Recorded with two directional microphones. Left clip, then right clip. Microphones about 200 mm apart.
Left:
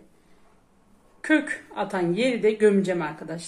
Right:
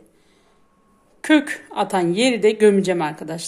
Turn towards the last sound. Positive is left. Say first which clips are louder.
# right 6 dB
turn(degrees=-45)  # may be behind; listen again after turning